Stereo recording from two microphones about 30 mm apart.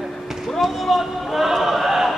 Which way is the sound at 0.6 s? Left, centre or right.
Centre.